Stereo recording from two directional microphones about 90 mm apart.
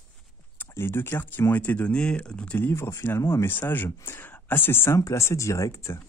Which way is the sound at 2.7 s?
30° left (ahead or behind).